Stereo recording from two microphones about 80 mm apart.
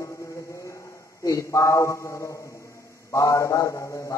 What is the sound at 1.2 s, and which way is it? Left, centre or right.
A man's voice, left.